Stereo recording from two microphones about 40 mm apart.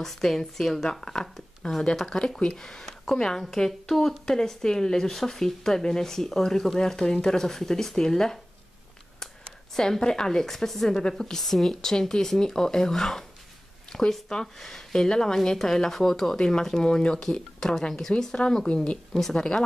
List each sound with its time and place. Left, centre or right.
0.0 s speech: centre
9.8 s speech: centre
18.4 s speech: left